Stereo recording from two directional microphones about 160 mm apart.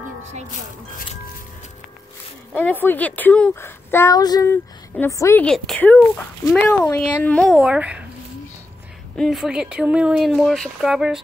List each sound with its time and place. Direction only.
2.5 s a woman's voice: 10° left (ahead or behind)
5.4 s a woman's voice: 5° left (ahead or behind)
7.6 s speech: 5° right (ahead or behind)
9.1 s speech: centre (ahead or behind)